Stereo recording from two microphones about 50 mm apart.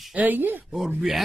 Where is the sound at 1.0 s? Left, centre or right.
Centre.